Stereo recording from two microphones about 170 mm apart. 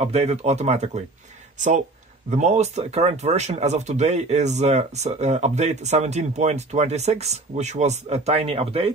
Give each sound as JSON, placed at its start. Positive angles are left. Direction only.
{"t": 0.0, "sound": "speech", "side_deg": -40}
{"t": 2.3, "sound": "speech", "side_deg": -40}